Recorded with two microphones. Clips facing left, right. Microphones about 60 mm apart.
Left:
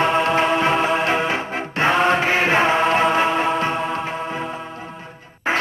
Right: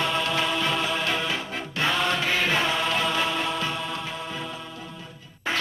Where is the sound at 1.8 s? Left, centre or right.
Left.